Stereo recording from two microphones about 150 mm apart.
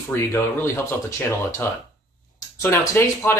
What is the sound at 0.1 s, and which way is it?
Speech, 15° left (ahead or behind).